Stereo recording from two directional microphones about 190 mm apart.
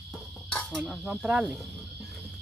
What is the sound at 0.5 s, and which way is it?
Speech, centre (ahead or behind).